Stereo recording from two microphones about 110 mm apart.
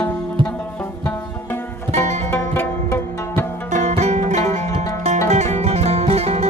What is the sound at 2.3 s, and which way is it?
Music, 20° left (ahead or behind).